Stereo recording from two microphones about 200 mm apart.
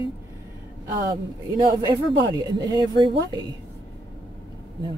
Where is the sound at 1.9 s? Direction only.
20° right (ahead or behind).